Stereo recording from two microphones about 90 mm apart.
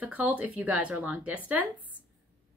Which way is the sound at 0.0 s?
15° right (ahead or behind).